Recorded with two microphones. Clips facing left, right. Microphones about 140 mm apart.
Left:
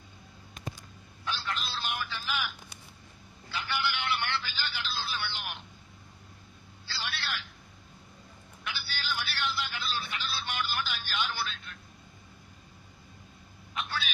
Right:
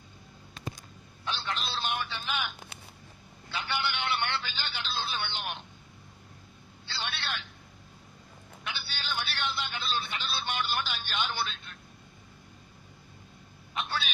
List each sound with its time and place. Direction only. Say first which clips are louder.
1.2 s a man's voice: right 1 dB; 25° right (ahead or behind)
3.5 s a man's voice: even; 25° right (ahead or behind)
6.9 s a man's voice: right 1 dB; 25° right (ahead or behind)
8.6 s telephone: left 1 dB; 25° right (ahead or behind)
13.7 s vehicle: right 2 dB; 30° right (ahead or behind)